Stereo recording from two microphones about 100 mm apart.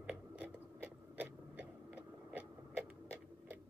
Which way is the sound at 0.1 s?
15° right (ahead or behind).